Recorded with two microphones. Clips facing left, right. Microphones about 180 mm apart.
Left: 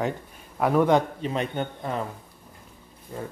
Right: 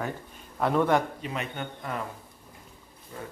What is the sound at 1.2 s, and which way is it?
Speech, 30° left (ahead or behind).